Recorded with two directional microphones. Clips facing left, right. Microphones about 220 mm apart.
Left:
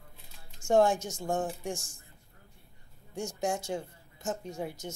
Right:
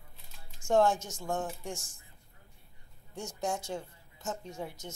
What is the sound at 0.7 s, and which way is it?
Speech, 15° left (ahead or behind).